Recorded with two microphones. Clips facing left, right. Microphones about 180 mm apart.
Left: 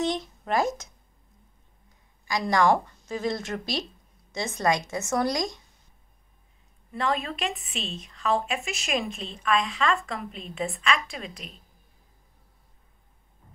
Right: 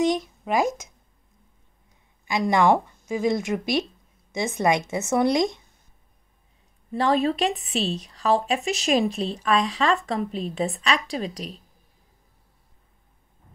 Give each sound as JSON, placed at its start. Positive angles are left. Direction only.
{"t": 0.0, "sound": "a sound", "side_deg": -10}
{"t": 2.2, "sound": "a woman's voice", "side_deg": -20}
{"t": 6.9, "sound": "speech", "side_deg": -30}